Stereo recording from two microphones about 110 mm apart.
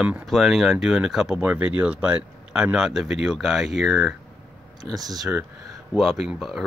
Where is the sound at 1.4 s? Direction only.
15° right (ahead or behind); by 4.1 s centre (ahead or behind).